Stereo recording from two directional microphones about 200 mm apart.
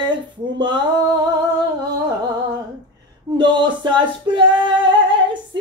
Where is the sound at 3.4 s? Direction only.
25° right (ahead or behind).